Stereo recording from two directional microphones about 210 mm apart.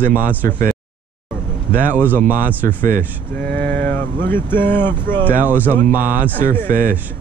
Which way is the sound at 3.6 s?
45° right (ahead or behind).